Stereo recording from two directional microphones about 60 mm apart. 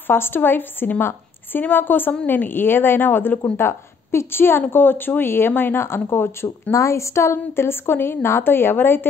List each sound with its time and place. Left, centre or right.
0.0 s speech: left